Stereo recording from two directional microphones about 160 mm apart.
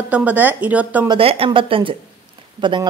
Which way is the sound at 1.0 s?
35° right (ahead or behind).